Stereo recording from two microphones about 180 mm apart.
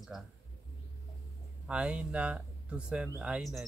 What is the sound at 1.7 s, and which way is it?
Speech, 5° right (ahead or behind).